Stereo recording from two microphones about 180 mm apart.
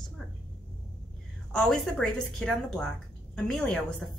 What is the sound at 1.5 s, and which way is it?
Speech, centre (ahead or behind).